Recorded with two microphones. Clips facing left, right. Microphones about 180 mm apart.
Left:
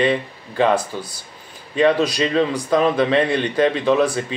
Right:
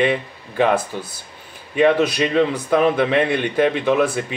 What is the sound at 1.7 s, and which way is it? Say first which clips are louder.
Speech: right 1 dB; 10° right (ahead or behind).